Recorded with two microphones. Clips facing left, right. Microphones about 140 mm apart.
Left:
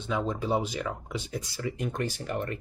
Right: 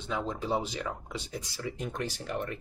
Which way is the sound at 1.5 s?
60° left (ahead or behind).